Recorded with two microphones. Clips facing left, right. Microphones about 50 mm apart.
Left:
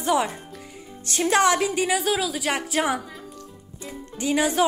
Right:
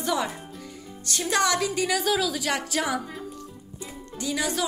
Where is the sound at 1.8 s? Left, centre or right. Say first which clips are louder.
Left 1 dB; centre.